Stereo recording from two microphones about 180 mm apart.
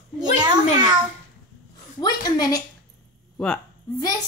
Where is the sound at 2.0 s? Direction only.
20° left (ahead or behind).